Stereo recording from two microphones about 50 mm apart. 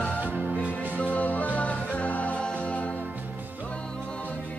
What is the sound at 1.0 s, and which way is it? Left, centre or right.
Music, left.